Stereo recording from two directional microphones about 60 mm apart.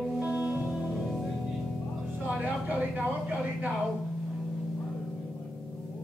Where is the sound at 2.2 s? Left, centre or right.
Centre.